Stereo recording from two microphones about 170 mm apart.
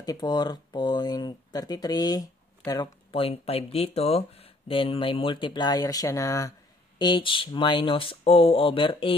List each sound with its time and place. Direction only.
0.0 s speech: 20° left (ahead or behind)